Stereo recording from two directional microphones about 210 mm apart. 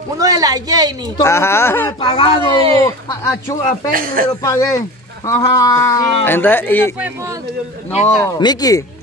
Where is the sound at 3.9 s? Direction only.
45° right (ahead or behind).